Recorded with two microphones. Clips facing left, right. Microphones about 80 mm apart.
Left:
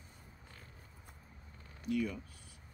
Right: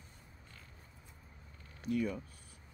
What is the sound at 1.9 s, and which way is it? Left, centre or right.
Speech, right.